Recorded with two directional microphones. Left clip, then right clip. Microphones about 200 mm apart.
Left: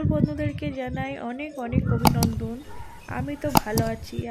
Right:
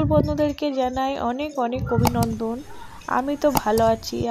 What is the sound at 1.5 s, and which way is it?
Speech, 5° right (ahead or behind).